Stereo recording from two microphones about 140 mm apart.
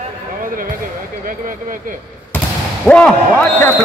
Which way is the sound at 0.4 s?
80° right.